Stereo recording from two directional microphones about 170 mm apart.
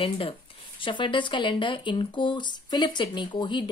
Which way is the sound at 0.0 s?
30° left (ahead or behind).